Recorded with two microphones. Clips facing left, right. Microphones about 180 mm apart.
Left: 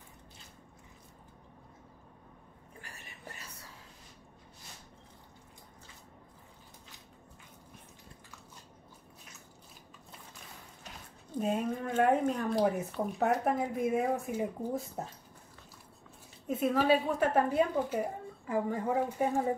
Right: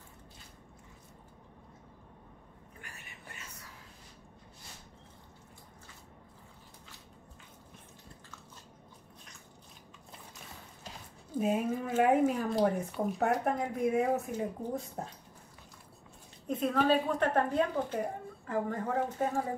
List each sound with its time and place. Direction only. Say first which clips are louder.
2.8 s whispering: left 3 dB; 35° left (ahead or behind)
11.3 s speech: right 2 dB; 5° right (ahead or behind)
16.4 s speech: left 1 dB; 5° left (ahead or behind)